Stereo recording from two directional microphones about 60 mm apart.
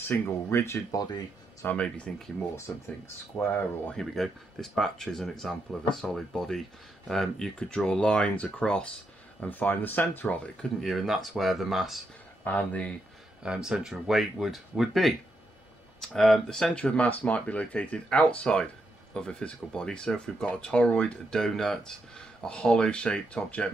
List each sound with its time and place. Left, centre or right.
0.0 s speech: left
0.5 s speech: left
0.9 s speech: left
1.8 s speech: centre
3.3 s speech: left
3.9 s speech: centre; by 10.2 s left
10.2 s speech: centre
10.8 s speech: centre
12.4 s speech: left
13.4 s speech: centre
16.7 s speech: left
21.3 s speech: centre